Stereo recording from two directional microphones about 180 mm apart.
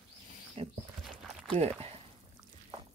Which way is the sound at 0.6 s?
35° right (ahead or behind).